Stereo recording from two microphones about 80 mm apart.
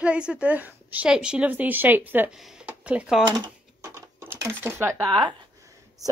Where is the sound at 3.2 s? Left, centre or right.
Right.